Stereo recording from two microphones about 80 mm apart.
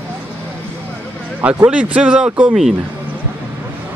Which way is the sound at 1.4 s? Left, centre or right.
Centre.